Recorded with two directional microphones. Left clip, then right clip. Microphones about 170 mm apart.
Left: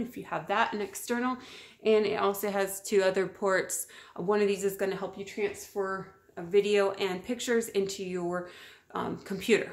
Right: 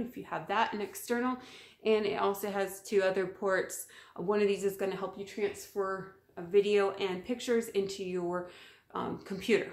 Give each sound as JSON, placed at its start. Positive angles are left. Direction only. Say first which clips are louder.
{"t": 0.1, "sound": "speech", "louder": "left 3 dB", "side_deg": 25}